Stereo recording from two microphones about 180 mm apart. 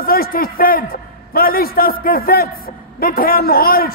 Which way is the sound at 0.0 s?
55° left (ahead or behind).